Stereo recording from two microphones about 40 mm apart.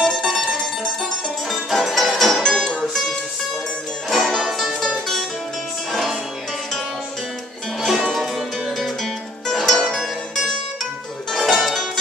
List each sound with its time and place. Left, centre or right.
0.0 s mandolin: centre
1.5 s music: centre
2.4 s music: centre
4.1 s music: centre
8.0 s music: centre
9.5 s music: centre
11.3 s music: centre